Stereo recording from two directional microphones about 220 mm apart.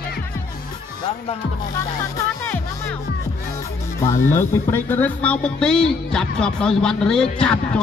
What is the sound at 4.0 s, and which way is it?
Speech, 10° left (ahead or behind).